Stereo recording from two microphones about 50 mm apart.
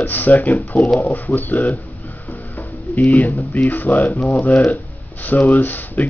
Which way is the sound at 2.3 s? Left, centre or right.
Left.